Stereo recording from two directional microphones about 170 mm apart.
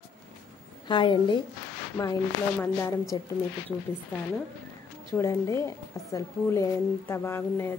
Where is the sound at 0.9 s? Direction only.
30° left (ahead or behind).